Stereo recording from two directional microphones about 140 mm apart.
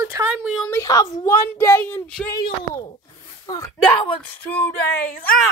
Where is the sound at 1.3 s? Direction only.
20° left (ahead or behind).